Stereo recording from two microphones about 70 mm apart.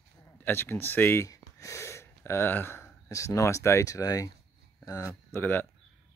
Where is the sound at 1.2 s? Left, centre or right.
Left.